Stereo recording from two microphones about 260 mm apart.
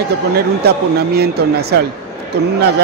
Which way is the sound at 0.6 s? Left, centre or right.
Right.